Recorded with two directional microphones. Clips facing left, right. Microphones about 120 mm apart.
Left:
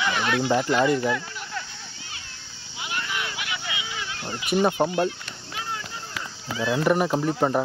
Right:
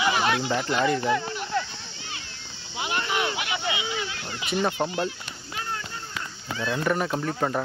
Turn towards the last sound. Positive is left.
turn(degrees=10)  # may be behind; listen again after turning